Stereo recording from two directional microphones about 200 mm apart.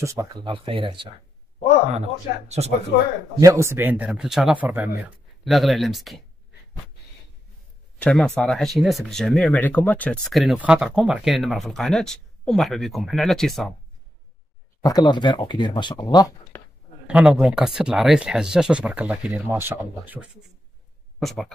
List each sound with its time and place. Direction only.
0.0 s speech: 15° right (ahead or behind); by 2.7 s 35° right (ahead or behind)
3.3 s speech: 15° right (ahead or behind)
8.0 s speech: 5° left (ahead or behind)
14.8 s speech: 20° left (ahead or behind)
17.1 s speech: 5° right (ahead or behind)